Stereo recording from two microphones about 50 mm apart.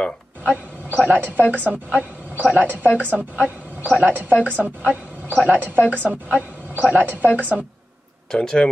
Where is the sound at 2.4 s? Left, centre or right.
Right.